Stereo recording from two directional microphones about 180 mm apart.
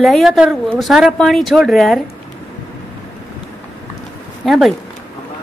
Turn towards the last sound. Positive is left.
turn(degrees=0)  # may be behind; listen again after turning